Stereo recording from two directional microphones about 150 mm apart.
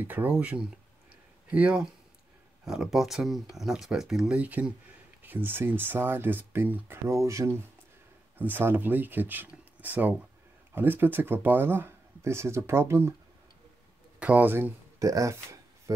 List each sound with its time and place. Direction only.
0.1 s speech: 10° right (ahead or behind)
14.2 s speech: 10° right (ahead or behind)